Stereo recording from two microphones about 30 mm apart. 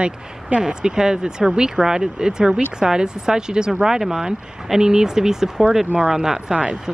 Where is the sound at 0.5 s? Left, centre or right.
Right.